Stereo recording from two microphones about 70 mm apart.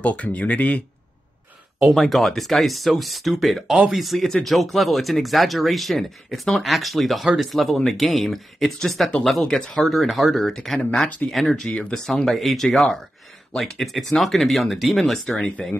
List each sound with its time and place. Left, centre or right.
0.0 s speech: centre
1.9 s speech: centre